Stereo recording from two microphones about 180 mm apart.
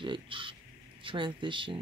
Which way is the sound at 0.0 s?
25° right (ahead or behind).